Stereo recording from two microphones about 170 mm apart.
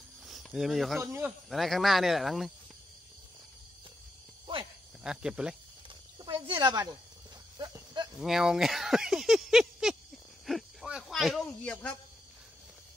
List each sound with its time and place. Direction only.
0.3 s speech: centre (ahead or behind)
1.0 s speech: 15° right (ahead or behind)
1.5 s speech: centre (ahead or behind)
4.5 s cricket: 30° right (ahead or behind)
5.0 s speech: 5° right (ahead or behind)
6.1 s speech: 30° right (ahead or behind)
7.5 s a sound: 25° right (ahead or behind)
8.2 s speech: 5° right (ahead or behind)